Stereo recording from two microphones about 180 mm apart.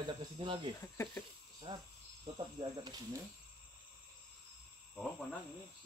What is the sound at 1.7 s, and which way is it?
Speech, 30° right (ahead or behind).